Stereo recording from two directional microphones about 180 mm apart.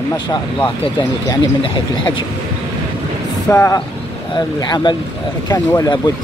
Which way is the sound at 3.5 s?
15° left (ahead or behind).